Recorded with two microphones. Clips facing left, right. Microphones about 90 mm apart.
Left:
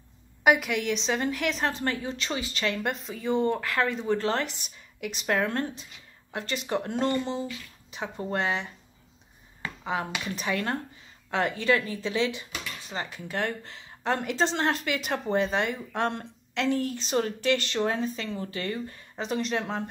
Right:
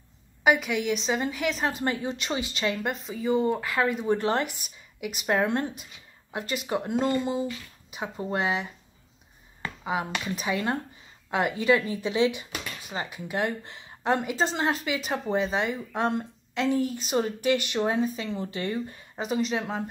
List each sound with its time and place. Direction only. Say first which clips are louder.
0.4 s a woman's voice: even; centre (ahead or behind); by 2.7 s 20° right (ahead or behind)
2.7 s speech: right 1 dB; centre (ahead or behind); by 4.5 s 20° right (ahead or behind)
4.5 s a woman's voice: even; 5° right (ahead or behind)
5.2 s speech: right 2 dB; 20° right (ahead or behind)
10.2 s speech: right 1 dB; 10° right (ahead or behind)
19.2 s a woman's voice: right 1 dB; 5° right (ahead or behind)